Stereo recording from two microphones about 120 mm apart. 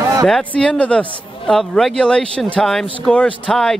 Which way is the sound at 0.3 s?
10° left (ahead or behind).